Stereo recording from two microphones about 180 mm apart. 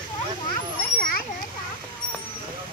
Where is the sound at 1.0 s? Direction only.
50° left (ahead or behind).